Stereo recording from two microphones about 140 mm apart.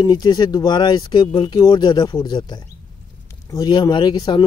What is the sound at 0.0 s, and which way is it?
Speech, 30° left (ahead or behind).